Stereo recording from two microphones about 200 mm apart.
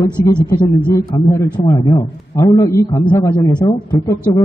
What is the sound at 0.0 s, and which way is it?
A man's voice, 20° left (ahead or behind).